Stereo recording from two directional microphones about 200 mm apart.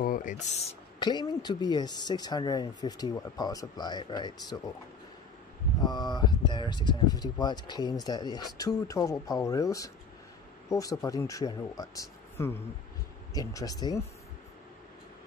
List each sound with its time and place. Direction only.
0.0 s speech: 40° left (ahead or behind)
0.9 s speech: 20° left (ahead or behind)
5.8 s speech: 20° left (ahead or behind)